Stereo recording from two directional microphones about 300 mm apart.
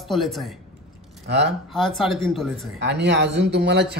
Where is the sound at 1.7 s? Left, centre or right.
Centre.